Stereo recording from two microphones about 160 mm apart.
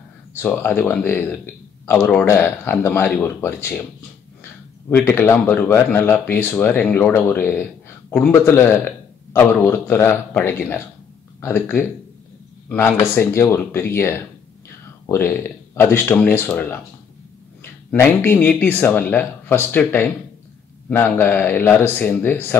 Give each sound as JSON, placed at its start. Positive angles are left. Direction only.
{"t": 0.4, "sound": "a man's voice", "side_deg": 10}
{"t": 17.9, "sound": "a man's voice", "side_deg": 15}